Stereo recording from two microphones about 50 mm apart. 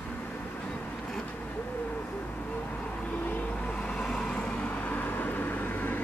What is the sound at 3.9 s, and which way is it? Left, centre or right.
Vehicle, centre.